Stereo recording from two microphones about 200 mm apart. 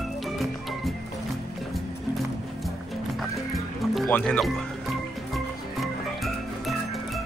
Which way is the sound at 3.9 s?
5° left (ahead or behind).